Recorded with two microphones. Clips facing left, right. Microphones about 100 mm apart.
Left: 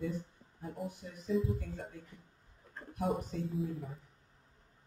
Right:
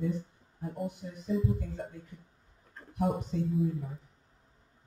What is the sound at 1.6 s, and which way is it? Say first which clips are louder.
Speech: right 5 dB; 50° right (ahead or behind).